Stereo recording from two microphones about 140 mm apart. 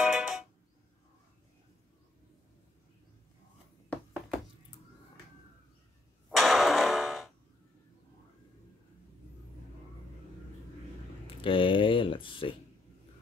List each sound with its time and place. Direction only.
0.0 s music: 5° right (ahead or behind)
6.3 s a sound: centre (ahead or behind)
11.2 s speech: 40° left (ahead or behind)